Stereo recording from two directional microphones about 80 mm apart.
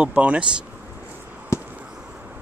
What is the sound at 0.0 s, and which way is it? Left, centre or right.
Speech, centre.